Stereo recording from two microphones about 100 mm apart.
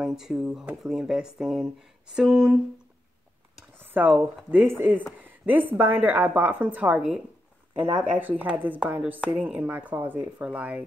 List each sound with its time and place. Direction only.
0.0 s a woman's voice: 5° right (ahead or behind)
3.8 s a woman's voice: 20° right (ahead or behind)